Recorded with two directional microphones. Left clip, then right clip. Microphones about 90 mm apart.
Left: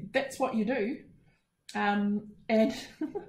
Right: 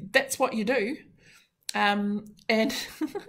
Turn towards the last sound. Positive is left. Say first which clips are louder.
# right 5 dB
turn(degrees=-20)  # may be behind; listen again after turning